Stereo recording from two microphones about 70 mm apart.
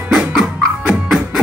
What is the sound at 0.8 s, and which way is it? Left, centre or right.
Music, centre.